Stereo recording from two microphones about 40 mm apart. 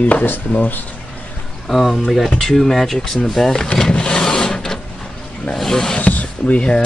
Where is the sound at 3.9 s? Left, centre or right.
Left.